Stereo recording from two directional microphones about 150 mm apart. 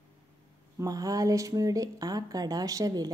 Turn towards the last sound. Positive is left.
turn(degrees=-25)  # may be behind; listen again after turning